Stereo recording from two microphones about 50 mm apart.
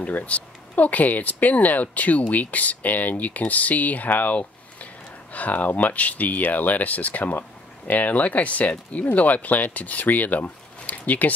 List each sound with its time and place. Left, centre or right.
0.0 s speech: left